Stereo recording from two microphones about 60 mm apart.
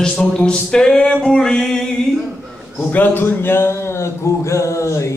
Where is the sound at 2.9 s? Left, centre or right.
Left.